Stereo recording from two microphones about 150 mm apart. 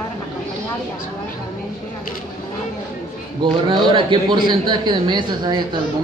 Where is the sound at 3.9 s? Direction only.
35° right (ahead or behind).